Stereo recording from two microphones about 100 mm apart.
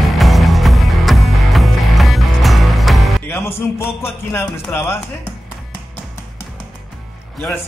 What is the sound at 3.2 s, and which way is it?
Music, 20° left (ahead or behind).